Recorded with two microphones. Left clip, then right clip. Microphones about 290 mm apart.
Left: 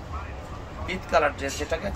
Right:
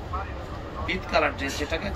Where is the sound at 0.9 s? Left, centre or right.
Left.